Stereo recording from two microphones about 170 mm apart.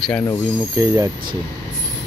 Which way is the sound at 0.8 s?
20° right (ahead or behind).